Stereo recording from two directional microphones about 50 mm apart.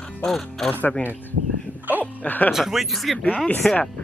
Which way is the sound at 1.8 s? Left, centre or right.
Right.